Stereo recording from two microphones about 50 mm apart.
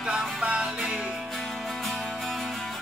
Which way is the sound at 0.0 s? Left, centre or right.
Centre.